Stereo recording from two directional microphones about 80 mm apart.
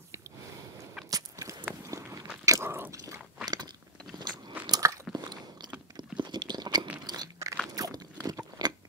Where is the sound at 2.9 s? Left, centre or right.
Right.